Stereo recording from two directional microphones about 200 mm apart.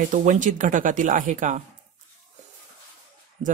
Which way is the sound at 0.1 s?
40° right (ahead or behind).